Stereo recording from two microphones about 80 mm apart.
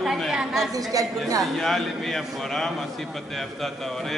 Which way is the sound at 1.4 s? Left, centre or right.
Centre.